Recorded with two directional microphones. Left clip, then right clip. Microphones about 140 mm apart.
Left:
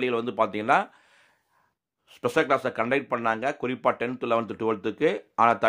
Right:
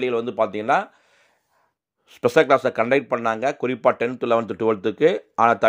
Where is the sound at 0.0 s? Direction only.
10° right (ahead or behind).